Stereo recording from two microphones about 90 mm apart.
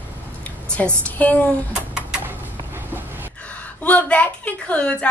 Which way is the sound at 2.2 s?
20° right (ahead or behind).